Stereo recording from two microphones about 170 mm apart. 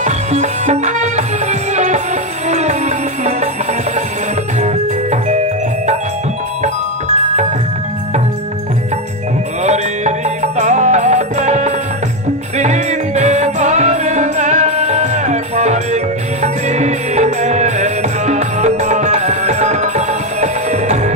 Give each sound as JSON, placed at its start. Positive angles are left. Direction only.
{"t": 0.0, "sound": "music", "side_deg": -40}
{"t": 4.6, "sound": "music", "side_deg": -40}
{"t": 9.6, "sound": "music", "side_deg": -40}